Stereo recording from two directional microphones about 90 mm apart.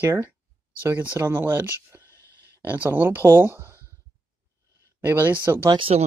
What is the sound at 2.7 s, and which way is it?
Speech, 20° right (ahead or behind).